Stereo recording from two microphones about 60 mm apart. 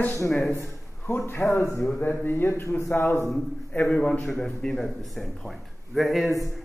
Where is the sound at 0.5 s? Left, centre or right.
Left.